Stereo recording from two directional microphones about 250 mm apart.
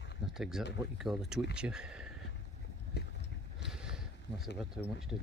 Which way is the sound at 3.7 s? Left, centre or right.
Centre.